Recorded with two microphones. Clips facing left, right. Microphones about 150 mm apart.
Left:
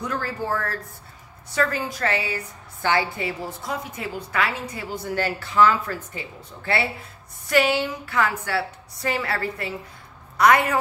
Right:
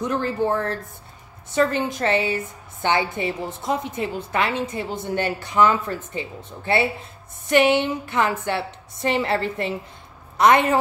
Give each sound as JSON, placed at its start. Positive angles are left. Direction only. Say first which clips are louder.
{"t": 0.0, "sound": "a woman's voice", "louder": "right 6 dB", "side_deg": -20}